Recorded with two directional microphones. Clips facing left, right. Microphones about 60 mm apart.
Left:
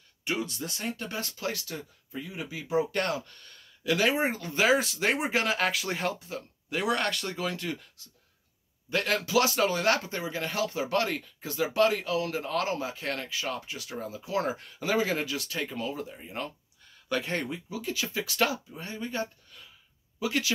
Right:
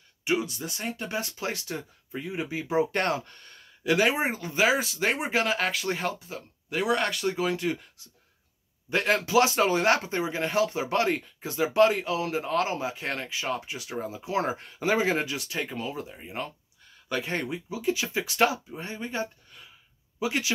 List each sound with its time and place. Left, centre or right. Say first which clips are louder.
0.2 s speech: right 4 dB; centre